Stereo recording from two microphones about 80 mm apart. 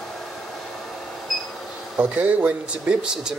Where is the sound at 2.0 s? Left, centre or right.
Centre.